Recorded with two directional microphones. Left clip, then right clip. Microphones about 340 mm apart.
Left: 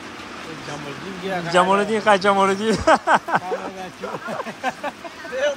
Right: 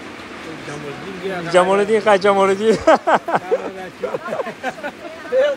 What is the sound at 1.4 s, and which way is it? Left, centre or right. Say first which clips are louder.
Speech: right 3 dB; centre.